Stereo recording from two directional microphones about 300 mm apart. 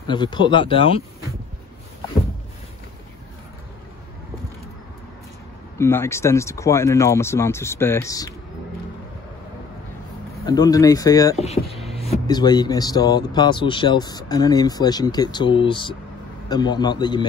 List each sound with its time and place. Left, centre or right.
0.0 s speech: centre
5.8 s speech: centre
10.4 s speech: centre